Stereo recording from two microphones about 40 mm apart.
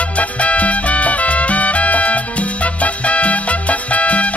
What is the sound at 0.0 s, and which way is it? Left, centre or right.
Music, left.